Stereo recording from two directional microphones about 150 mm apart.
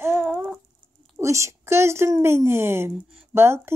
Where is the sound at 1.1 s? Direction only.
20° right (ahead or behind).